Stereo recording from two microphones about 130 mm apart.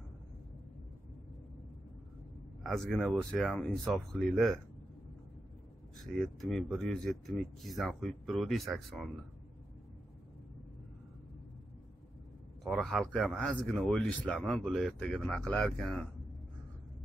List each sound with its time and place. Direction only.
2.6 s speech: centre (ahead or behind)
6.8 s speech: centre (ahead or behind)
12.7 s speech: centre (ahead or behind)